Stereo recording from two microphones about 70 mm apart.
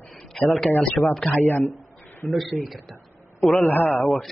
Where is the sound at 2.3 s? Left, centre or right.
Centre.